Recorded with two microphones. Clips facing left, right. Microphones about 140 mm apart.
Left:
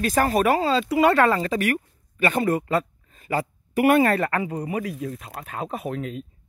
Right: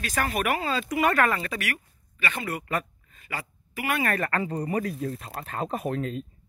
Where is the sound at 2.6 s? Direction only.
25° left (ahead or behind).